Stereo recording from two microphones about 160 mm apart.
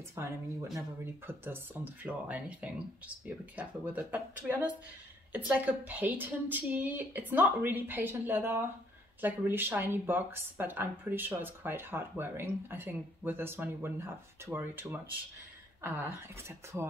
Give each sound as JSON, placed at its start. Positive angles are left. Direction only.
{"t": 0.1, "sound": "speech", "side_deg": -15}